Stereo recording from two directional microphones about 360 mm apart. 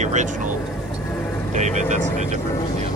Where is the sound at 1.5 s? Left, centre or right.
Centre.